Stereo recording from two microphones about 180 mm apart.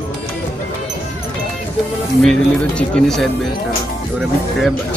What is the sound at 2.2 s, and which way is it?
Speech, 5° left (ahead or behind).